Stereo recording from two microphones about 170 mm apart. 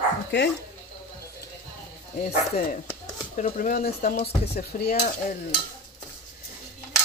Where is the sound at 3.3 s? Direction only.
50° left (ahead or behind).